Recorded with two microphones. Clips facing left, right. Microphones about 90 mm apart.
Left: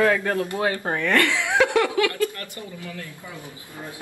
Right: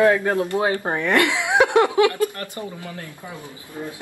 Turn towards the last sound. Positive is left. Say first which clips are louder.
# right 4 dB
turn(degrees=-20)  # may be behind; listen again after turning